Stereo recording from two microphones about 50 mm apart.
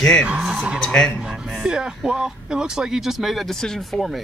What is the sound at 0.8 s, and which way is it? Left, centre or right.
Speech, centre.